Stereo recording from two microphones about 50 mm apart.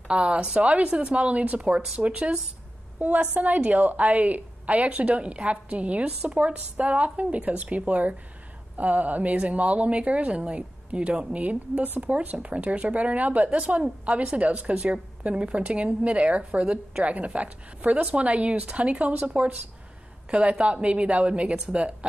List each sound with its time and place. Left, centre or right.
0.1 s a woman's voice: right
11.4 s a woman's voice: right